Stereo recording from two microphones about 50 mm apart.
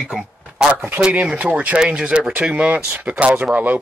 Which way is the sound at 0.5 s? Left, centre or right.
Right.